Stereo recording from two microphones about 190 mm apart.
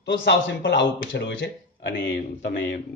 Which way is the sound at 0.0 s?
65° left (ahead or behind).